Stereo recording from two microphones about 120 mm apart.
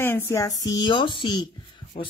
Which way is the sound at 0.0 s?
20° left (ahead or behind).